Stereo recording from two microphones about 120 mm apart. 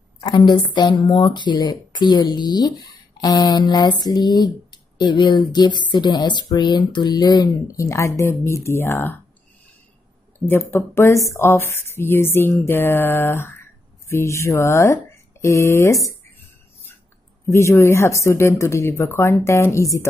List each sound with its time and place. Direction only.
0.2 s speech: 40° left (ahead or behind); by 9.2 s 20° left (ahead or behind)
10.5 s speech: 15° left (ahead or behind)
17.5 s speech: 25° left (ahead or behind)